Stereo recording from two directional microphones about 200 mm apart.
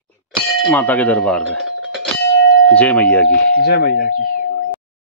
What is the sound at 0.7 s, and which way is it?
Speech, 10° left (ahead or behind).